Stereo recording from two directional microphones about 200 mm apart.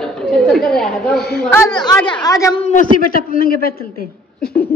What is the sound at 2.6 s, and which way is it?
Speech, 35° left (ahead or behind).